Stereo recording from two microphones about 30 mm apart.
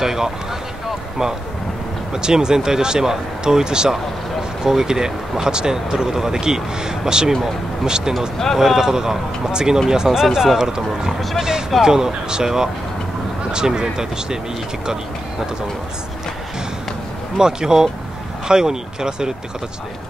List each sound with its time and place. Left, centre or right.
0.0 s speech: centre
2.2 s speech: right
8.5 s speech: centre
11.8 s speech: right
17.4 s speech: right